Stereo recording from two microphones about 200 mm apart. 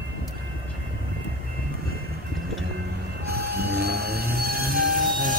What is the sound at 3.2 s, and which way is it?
Train, 50° right (ahead or behind).